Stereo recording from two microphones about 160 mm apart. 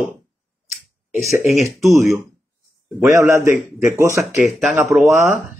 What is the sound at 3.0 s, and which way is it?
A man's voice, 15° right (ahead or behind).